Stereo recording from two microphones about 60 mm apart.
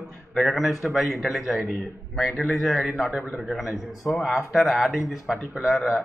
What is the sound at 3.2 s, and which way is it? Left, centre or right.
Speech, right.